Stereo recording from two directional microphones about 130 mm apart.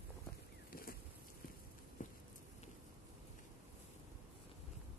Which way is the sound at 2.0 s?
90° left.